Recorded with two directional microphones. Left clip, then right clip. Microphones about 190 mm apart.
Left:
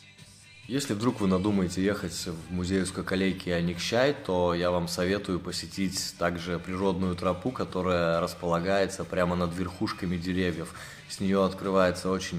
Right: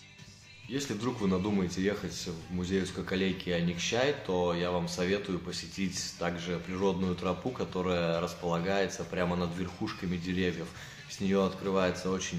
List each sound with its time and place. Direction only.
0.7 s speech: 35° left (ahead or behind)